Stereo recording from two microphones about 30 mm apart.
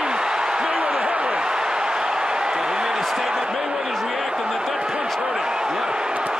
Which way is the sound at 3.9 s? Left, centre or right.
Centre.